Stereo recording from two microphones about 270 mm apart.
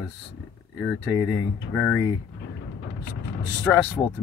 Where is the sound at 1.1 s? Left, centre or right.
Centre.